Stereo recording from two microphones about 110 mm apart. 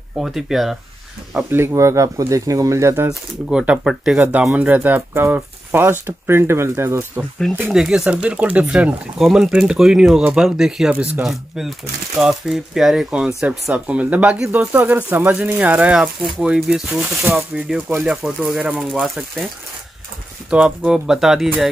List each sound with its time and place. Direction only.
0.2 s speech: 5° right (ahead or behind)
1.5 s speech: 20° right (ahead or behind)
3.1 s speech: 5° right (ahead or behind); by 7.2 s 20° right (ahead or behind)
7.7 s speech: 5° right (ahead or behind)
20.4 s speech: 10° right (ahead or behind)